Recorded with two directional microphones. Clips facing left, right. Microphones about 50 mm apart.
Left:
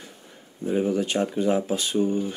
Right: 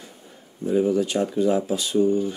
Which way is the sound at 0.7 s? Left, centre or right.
Left.